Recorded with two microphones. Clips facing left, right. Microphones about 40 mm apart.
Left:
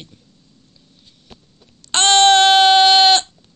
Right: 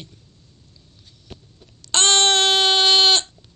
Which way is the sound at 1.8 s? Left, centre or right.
Left.